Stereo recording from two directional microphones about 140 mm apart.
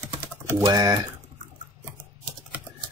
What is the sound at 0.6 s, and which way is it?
Speech, 30° right (ahead or behind).